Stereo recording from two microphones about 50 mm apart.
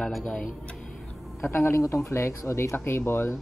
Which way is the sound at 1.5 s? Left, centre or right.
Left.